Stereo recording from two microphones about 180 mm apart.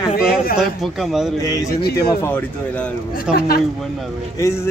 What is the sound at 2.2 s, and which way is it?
Speech, 10° left (ahead or behind).